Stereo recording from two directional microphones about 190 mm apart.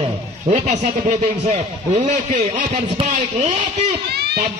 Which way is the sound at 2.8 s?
30° right (ahead or behind).